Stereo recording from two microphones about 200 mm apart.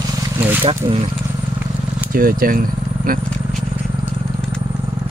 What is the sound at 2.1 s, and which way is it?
Speech, 45° right (ahead or behind).